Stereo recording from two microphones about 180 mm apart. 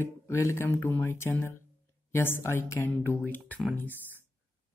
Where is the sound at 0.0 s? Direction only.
15° left (ahead or behind).